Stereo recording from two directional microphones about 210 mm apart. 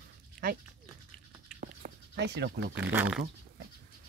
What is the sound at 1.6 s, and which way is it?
Goat, 50° right (ahead or behind).